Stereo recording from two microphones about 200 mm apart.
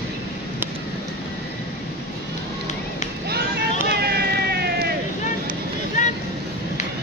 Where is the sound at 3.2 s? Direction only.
55° right (ahead or behind).